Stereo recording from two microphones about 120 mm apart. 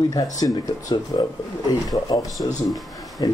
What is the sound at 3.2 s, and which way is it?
Speech, 35° left (ahead or behind).